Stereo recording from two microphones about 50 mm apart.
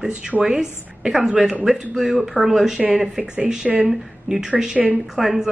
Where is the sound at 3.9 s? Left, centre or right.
Centre.